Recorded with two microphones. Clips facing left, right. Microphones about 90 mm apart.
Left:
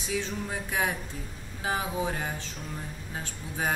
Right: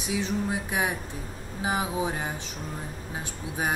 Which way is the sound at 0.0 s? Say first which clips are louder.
Right 4 dB; 15° right (ahead or behind).